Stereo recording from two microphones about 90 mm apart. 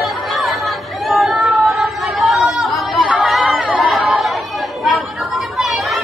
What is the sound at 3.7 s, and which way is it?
Chatter, 15° right (ahead or behind).